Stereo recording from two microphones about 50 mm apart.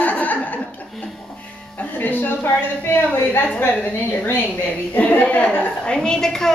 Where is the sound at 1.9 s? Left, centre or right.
Left.